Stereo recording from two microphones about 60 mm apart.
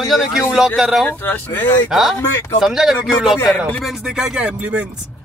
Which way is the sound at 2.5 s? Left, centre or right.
Centre.